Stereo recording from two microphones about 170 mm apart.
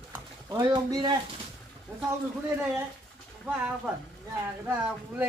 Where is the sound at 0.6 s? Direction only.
25° right (ahead or behind).